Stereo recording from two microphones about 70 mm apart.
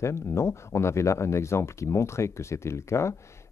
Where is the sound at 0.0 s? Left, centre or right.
Left.